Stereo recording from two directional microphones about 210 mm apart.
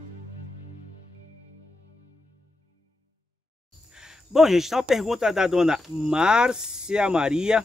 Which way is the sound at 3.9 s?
5° right (ahead or behind).